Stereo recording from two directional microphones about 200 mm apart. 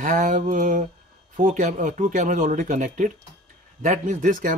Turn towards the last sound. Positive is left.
turn(degrees=-40)  # may be behind; listen again after turning